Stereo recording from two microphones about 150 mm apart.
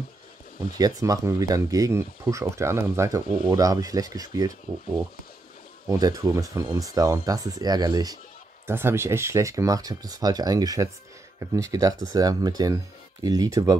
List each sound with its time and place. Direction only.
0.7 s speech: 25° right (ahead or behind)
5.9 s speech: 25° right (ahead or behind)